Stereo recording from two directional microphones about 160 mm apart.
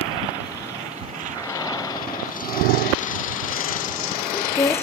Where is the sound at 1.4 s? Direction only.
20° left (ahead or behind).